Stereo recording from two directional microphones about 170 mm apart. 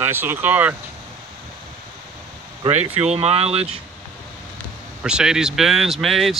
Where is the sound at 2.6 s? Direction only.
30° right (ahead or behind).